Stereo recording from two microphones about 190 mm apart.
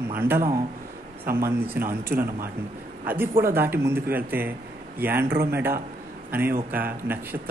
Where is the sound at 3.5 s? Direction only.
10° right (ahead or behind).